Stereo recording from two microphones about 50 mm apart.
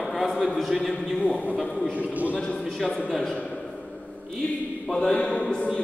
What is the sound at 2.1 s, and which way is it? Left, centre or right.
Speech, right.